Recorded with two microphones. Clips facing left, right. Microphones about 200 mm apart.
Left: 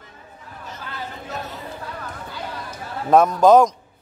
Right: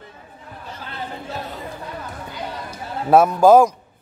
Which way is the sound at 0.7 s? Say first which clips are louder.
Right 1 dB; 25° right (ahead or behind).